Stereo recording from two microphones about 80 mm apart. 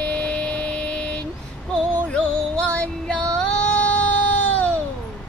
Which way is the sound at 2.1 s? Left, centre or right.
Centre.